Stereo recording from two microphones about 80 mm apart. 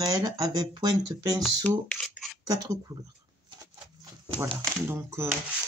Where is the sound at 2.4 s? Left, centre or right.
Right.